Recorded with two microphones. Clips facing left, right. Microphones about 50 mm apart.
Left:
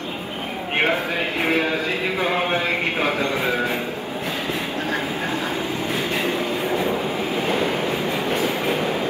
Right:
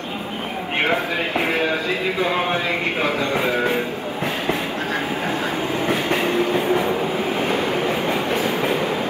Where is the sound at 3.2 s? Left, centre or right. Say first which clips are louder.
Right 1 dB; right.